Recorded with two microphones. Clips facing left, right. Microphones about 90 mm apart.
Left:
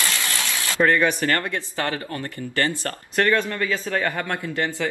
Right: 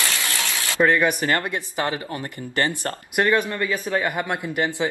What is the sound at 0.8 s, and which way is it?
Speech, 10° right (ahead or behind).